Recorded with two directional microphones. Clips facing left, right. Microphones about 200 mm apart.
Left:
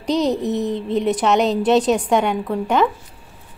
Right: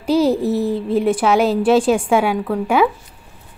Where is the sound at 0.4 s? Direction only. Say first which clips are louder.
Right 3 dB; 35° right (ahead or behind).